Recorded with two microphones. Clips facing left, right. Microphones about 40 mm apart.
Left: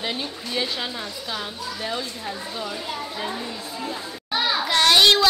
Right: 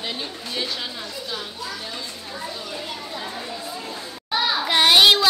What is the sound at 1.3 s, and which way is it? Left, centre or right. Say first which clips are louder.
Speech: left 2 dB; left.